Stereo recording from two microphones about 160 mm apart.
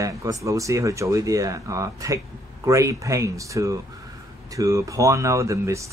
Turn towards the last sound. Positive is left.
turn(degrees=-20)  # may be behind; listen again after turning